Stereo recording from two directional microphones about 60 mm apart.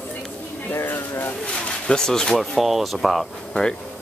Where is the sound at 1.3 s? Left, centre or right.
Centre.